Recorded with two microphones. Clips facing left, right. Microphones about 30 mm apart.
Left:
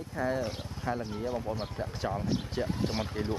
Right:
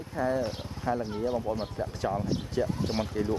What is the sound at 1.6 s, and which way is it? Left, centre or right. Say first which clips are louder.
Speech: right 3 dB; centre.